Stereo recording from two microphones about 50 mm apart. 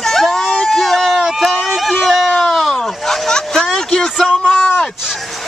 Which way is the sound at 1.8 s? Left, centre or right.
Centre.